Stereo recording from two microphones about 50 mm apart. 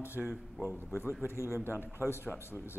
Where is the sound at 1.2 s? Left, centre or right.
Left.